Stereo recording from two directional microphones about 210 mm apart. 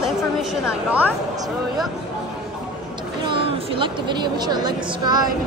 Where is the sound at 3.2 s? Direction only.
25° right (ahead or behind).